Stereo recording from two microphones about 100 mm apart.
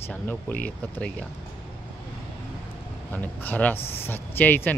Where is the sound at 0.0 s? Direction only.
20° left (ahead or behind).